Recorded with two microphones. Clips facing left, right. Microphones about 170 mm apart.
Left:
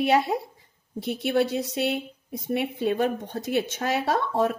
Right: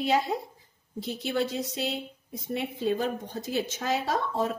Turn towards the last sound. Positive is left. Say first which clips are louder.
# left 4 dB
turn(degrees=60)  # may be behind; listen again after turning